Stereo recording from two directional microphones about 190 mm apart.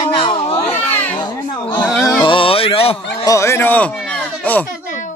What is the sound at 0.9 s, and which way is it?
Children playing, 10° left (ahead or behind).